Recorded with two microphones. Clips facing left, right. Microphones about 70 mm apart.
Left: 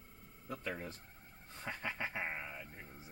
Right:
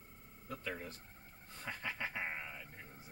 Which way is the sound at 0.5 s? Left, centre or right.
Centre.